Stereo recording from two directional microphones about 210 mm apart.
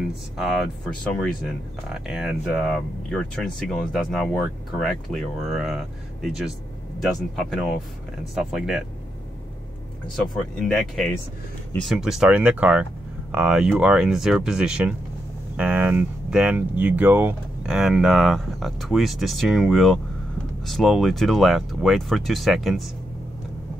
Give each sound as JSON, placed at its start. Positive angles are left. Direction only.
{"t": 0.4, "sound": "speech", "side_deg": 0}
{"t": 10.3, "sound": "speech", "side_deg": 0}